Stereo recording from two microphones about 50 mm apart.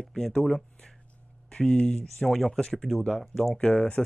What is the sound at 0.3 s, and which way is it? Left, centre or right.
Speech, centre.